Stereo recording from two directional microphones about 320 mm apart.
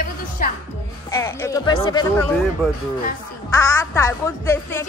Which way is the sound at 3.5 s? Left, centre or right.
Centre.